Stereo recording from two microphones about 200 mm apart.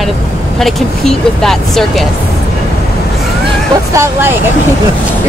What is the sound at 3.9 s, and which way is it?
Speech, 15° right (ahead or behind).